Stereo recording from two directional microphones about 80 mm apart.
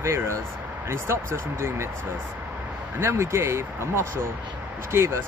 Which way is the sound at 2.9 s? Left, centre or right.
Right.